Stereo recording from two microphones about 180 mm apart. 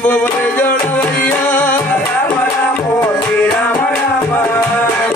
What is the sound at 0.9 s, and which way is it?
Music, 10° left (ahead or behind).